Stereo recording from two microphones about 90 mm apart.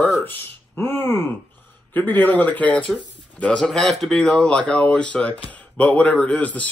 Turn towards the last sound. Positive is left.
turn(degrees=15)  # may be behind; listen again after turning